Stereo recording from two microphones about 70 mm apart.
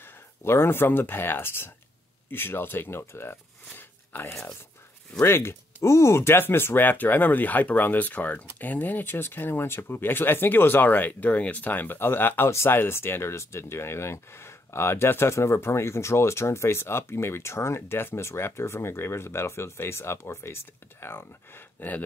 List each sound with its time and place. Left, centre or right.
0.4 s speech: left
12.4 s speech: left